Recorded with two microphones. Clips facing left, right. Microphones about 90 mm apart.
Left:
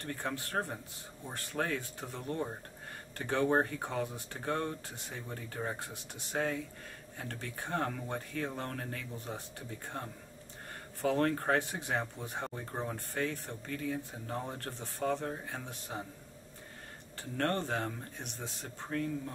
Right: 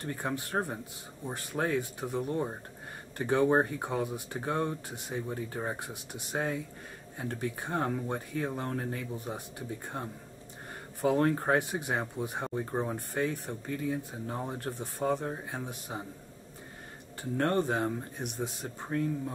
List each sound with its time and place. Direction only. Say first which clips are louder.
0.0 s speech: right 3 dB; 20° right (ahead or behind)
17.2 s speech: right 5 dB; 15° right (ahead or behind)